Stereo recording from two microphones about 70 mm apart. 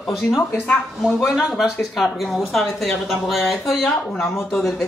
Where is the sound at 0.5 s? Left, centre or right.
Left.